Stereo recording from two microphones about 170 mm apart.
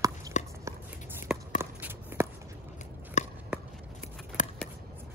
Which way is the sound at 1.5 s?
15° right (ahead or behind).